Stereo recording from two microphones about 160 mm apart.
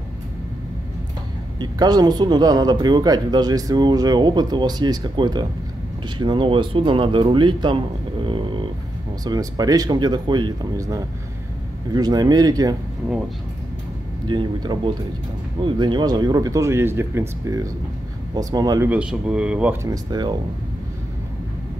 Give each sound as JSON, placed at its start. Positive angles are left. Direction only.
{"t": 1.6, "sound": "speech", "side_deg": -25}
{"t": 14.2, "sound": "speech", "side_deg": -30}
{"t": 18.9, "sound": "speech", "side_deg": -5}
{"t": 19.8, "sound": "speech", "side_deg": -25}